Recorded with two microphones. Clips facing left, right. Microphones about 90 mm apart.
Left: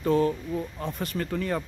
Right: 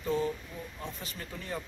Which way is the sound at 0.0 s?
65° left (ahead or behind).